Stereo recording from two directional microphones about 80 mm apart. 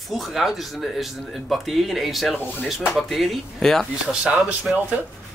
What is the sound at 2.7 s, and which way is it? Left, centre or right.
Speech, centre.